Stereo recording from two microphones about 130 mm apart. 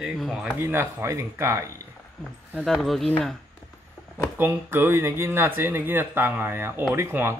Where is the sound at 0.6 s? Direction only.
20° right (ahead or behind).